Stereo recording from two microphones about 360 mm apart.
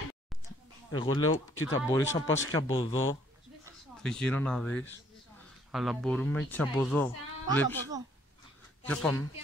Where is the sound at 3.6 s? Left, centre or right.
Centre.